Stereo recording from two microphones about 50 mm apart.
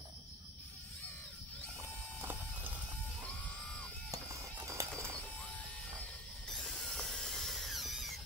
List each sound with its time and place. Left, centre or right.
3.3 s music: left
4.8 s bird: right
6.5 s tools: centre